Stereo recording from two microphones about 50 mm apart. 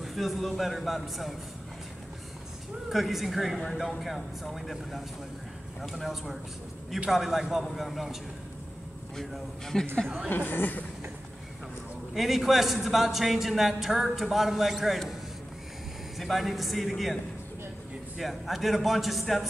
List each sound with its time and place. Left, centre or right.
0.0 s a man's voice: centre
2.9 s a man's voice: centre
10.0 s a woman's voice: centre
10.3 s a woman's voice: left
12.1 s a man's voice: centre
16.2 s a man's voice: centre